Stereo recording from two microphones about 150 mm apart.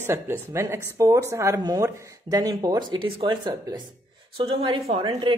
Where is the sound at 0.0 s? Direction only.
15° right (ahead or behind).